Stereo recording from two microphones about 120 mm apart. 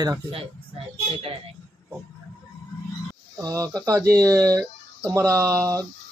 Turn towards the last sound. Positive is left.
turn(degrees=-30)  # may be behind; listen again after turning